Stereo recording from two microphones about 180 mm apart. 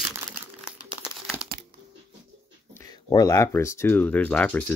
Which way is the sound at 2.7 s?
20° left (ahead or behind).